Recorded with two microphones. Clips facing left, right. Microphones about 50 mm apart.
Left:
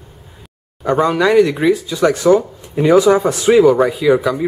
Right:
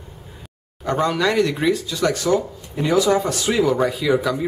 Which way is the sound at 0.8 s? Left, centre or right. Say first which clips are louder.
Left 6 dB; centre.